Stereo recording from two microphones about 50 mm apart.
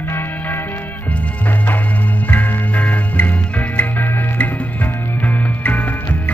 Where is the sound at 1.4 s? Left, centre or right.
Left.